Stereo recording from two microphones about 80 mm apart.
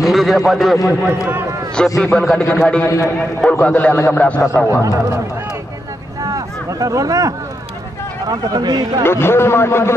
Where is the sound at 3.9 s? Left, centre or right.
Left.